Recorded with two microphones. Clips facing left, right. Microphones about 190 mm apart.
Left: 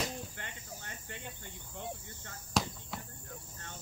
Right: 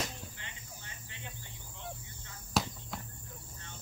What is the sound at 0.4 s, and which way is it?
Cricket, 50° left (ahead or behind).